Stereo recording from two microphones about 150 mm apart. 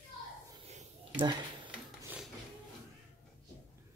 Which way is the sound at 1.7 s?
10° right (ahead or behind).